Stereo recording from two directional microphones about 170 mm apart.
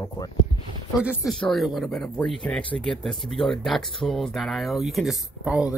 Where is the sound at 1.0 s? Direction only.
Centre (ahead or behind).